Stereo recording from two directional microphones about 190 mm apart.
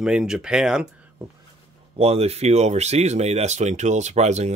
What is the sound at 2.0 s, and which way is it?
A man's voice, 35° right (ahead or behind).